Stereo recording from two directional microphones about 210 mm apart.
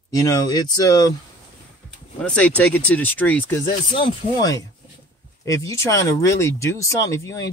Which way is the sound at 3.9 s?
20° left (ahead or behind).